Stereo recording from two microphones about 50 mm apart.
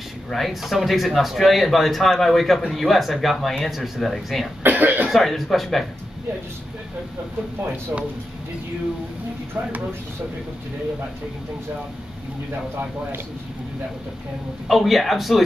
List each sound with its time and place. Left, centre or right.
0.3 s speech: centre
4.6 s speech: right
5.1 s speech: centre
14.7 s speech: centre